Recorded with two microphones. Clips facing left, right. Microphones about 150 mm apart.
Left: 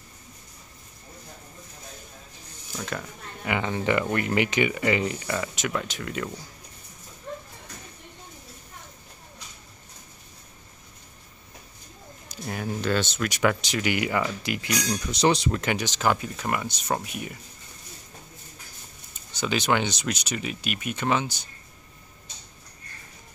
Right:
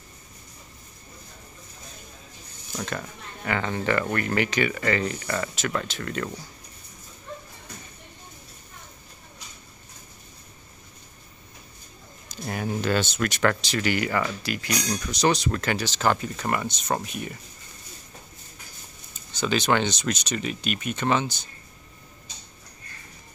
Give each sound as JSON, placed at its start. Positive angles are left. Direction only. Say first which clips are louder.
{"t": 2.8, "sound": "speech", "louder": "right 1 dB", "side_deg": 5}
{"t": 3.4, "sound": "speech", "louder": "even", "side_deg": 15}
{"t": 12.4, "sound": "speech", "louder": "right 1 dB", "side_deg": 0}
{"t": 13.3, "sound": "speech", "louder": "even", "side_deg": 10}
{"t": 19.3, "sound": "speech", "louder": "right 1 dB", "side_deg": 10}